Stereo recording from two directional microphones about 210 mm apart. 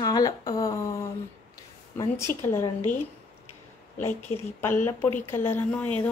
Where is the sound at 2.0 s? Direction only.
15° left (ahead or behind).